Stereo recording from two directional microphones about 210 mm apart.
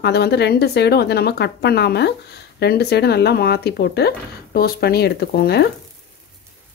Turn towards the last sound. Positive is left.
turn(degrees=50)  # may be behind; listen again after turning